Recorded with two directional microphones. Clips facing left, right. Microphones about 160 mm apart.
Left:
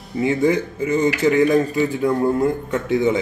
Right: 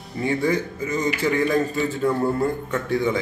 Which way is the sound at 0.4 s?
25° left (ahead or behind).